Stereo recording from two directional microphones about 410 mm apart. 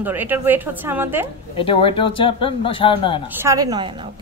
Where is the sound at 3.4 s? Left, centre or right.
Centre.